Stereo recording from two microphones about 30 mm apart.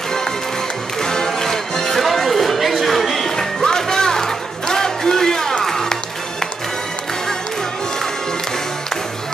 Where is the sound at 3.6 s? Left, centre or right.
Left.